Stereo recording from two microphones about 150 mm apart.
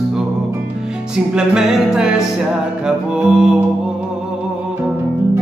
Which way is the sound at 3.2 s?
5° right (ahead or behind).